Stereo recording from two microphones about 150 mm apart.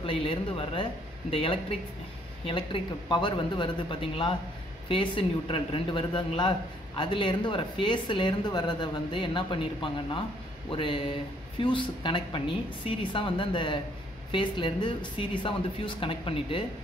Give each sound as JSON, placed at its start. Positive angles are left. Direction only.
{"t": 0.0, "sound": "speech", "side_deg": 35}